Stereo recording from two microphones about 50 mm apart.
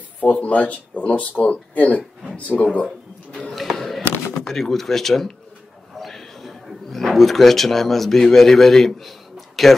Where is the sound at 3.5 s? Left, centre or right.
Centre.